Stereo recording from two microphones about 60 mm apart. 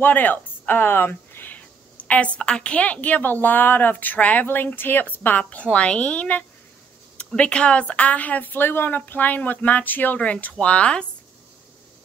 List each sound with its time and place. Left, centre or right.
0.0 s speech: left
5.4 s speech: centre